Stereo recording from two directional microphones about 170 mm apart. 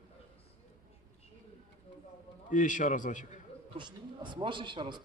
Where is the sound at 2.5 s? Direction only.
50° left (ahead or behind).